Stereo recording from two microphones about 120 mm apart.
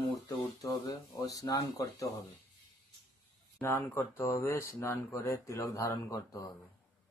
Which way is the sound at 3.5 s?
20° left (ahead or behind).